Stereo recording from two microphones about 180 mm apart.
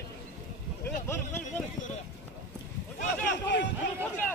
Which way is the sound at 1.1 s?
10° left (ahead or behind).